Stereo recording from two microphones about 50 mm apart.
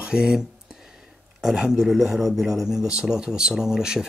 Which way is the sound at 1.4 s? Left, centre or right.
Centre.